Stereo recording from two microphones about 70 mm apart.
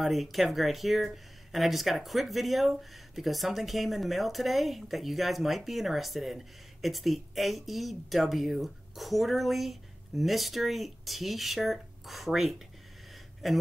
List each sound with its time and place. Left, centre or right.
0.0 s speech: centre